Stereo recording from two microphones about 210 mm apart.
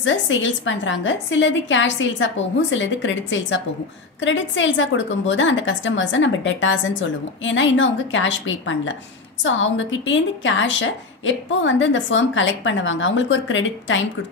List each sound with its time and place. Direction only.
0.0 s a woman's voice: 65° left (ahead or behind)